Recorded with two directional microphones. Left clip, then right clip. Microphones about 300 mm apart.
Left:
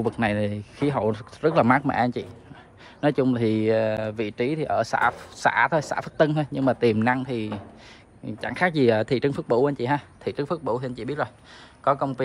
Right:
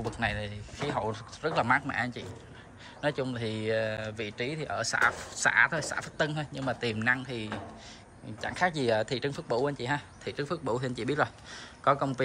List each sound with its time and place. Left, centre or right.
0.1 s a man's voice: centre